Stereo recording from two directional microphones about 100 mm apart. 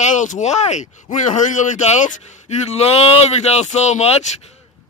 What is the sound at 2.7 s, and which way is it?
Speech, 90° left.